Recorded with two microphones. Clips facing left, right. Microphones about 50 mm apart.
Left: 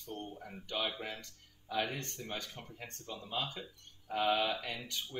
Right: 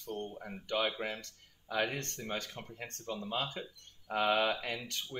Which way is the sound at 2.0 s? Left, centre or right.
Right.